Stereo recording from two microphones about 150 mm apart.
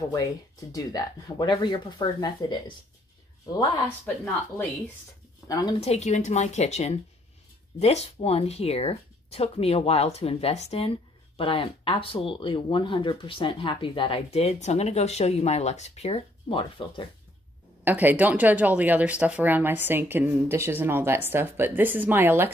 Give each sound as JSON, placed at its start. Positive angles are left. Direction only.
{"t": 0.1, "sound": "speech", "side_deg": 25}
{"t": 5.5, "sound": "speech", "side_deg": 25}
{"t": 5.8, "sound": "speech", "side_deg": 45}
{"t": 17.8, "sound": "speech", "side_deg": -10}